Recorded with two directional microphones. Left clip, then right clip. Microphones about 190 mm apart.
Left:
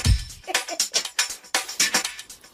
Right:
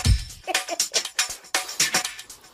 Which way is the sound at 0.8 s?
Centre (ahead or behind).